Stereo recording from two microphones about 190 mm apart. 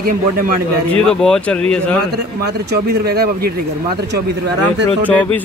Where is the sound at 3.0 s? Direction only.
55° right (ahead or behind).